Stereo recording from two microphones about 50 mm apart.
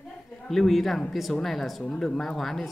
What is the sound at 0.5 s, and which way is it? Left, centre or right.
Speech, centre.